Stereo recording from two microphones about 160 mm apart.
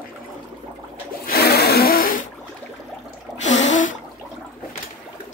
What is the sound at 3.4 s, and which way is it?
Gasp, 50° left (ahead or behind).